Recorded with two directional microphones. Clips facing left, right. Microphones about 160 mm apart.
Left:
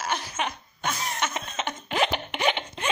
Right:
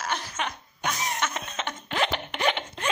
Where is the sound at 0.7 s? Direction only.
15° right (ahead or behind).